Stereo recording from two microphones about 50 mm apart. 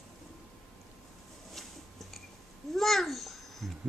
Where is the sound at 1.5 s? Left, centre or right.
Centre.